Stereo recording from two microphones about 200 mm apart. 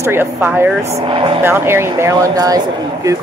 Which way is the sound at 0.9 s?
25° right (ahead or behind).